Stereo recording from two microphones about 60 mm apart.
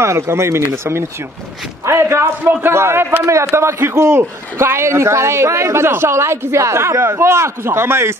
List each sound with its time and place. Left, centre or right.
0.0 s a man's voice: right